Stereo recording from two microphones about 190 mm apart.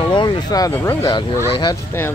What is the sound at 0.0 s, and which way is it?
Speech, 25° left (ahead or behind).